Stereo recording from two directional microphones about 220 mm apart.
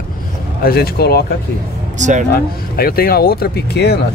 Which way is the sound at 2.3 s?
45° left (ahead or behind).